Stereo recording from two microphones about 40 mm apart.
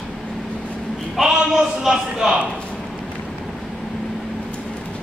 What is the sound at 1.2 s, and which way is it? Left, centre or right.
A man's voice, right.